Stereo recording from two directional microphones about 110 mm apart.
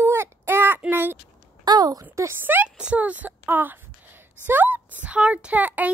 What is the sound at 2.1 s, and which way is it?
Speech, 25° right (ahead or behind).